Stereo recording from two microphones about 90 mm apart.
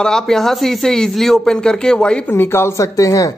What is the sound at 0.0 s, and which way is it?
Speech, 5° left (ahead or behind).